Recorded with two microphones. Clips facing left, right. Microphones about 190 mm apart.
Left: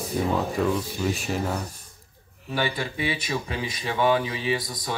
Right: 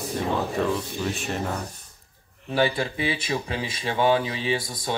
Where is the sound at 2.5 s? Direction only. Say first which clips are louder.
Right 4 dB; 30° right (ahead or behind).